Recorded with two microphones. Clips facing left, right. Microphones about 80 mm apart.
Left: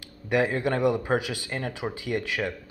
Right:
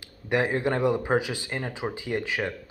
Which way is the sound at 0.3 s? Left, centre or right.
Right.